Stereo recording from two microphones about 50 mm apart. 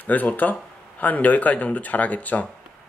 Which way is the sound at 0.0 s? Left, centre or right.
Left.